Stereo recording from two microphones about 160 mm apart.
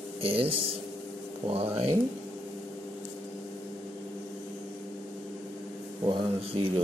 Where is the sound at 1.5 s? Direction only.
35° right (ahead or behind).